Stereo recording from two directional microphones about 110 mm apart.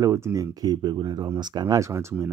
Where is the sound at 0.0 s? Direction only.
30° right (ahead or behind).